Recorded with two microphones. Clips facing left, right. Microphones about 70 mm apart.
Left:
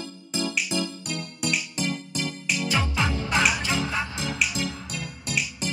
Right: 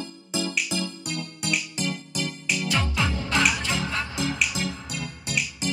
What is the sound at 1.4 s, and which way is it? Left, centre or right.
Music, centre.